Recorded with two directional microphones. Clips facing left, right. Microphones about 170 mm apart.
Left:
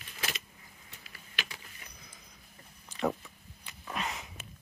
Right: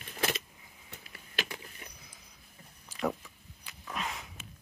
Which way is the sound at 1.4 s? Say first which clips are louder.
Right 5 dB; 40° right (ahead or behind).